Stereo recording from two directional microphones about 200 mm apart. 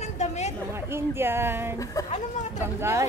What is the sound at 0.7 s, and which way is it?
Speech, 10° right (ahead or behind).